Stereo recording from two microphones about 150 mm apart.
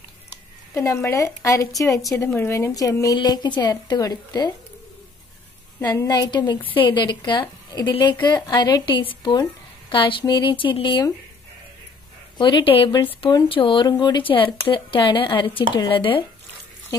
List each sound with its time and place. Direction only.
0.7 s a woman's voice: 20° left (ahead or behind)
5.9 s a woman's voice: 25° left (ahead or behind)
12.4 s a woman's voice: 30° left (ahead or behind)